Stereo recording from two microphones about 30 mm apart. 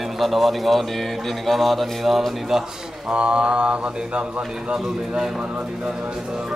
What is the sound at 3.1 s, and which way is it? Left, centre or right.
Mantra, right.